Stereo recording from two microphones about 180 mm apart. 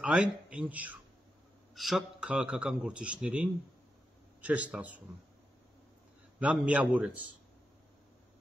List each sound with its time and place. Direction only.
0.0 s a man's voice: 5° right (ahead or behind)
6.4 s speech: 5° right (ahead or behind)